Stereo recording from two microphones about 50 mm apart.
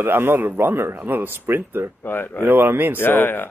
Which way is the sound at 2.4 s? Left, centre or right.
Right.